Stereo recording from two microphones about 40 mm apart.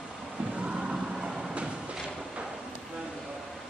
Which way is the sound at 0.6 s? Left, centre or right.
Right.